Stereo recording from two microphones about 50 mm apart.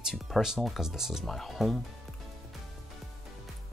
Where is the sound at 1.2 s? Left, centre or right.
Centre.